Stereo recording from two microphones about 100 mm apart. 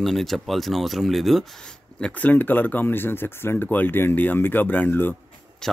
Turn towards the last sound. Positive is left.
turn(degrees=20)  # may be behind; listen again after turning